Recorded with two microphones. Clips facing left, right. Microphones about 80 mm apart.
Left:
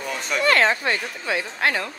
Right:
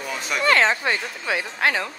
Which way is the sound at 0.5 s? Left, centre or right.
Right.